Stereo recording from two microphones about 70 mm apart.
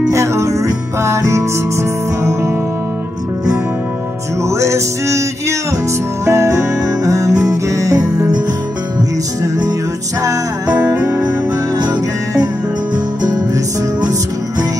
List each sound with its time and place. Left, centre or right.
0.1 s music: right
4.4 s music: right
9.4 s music: right
11.1 s music: right